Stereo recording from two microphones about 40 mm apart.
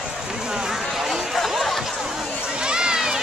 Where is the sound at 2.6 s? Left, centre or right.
Right.